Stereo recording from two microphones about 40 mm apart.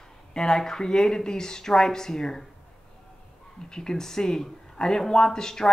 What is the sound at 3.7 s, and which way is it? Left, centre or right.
A man's voice, centre.